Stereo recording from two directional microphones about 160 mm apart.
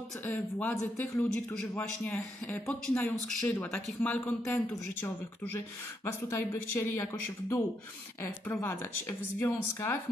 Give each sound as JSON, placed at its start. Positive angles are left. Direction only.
{"t": 0.2, "sound": "a man's voice", "side_deg": 10}
{"t": 6.5, "sound": "a man's voice", "side_deg": 15}